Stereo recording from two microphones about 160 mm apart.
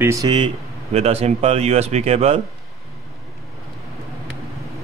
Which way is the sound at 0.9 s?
40° right (ahead or behind).